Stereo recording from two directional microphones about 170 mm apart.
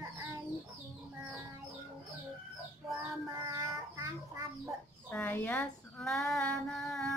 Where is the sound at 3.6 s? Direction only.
20° right (ahead or behind).